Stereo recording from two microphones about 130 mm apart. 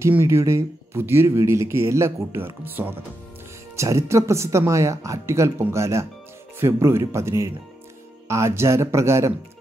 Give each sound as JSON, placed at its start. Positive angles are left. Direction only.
{"t": 0.0, "sound": "speech", "side_deg": -20}